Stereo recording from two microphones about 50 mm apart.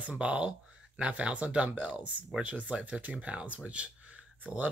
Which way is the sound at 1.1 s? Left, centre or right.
Right.